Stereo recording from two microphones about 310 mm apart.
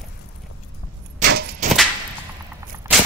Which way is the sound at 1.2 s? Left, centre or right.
Right.